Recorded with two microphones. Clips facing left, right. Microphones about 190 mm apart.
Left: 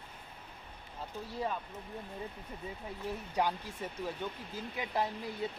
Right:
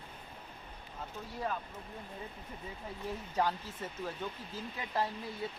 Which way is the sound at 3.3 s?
15° left (ahead or behind).